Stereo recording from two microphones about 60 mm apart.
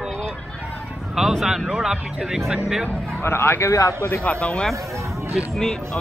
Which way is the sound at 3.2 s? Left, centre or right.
Left.